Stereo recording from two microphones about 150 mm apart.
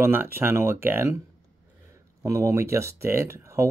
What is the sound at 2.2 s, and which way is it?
Speech, 20° right (ahead or behind).